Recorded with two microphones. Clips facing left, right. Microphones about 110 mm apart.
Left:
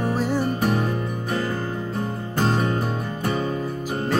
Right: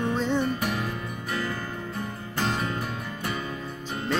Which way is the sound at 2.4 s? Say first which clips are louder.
Left 6 dB; 40° left (ahead or behind).